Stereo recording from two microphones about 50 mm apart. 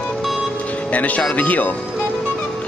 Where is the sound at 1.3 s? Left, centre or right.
Left.